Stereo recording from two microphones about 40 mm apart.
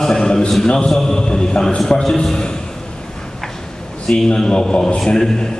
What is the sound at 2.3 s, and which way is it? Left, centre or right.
Speech, centre.